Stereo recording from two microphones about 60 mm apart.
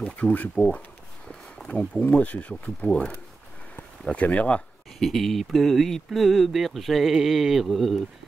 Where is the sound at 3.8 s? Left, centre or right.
Left.